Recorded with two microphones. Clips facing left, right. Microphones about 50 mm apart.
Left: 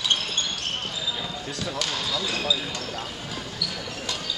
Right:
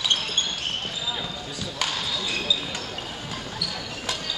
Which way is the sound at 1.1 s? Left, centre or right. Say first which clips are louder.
Even; centre.